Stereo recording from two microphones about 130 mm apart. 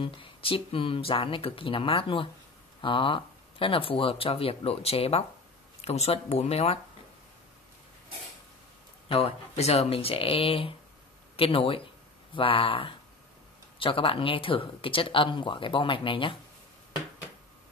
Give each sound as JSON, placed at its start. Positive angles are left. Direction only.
{"t": 0.0, "sound": "speech", "side_deg": 40}
{"t": 9.1, "sound": "speech", "side_deg": 50}